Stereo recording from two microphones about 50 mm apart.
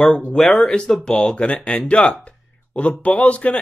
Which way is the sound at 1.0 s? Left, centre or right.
Centre.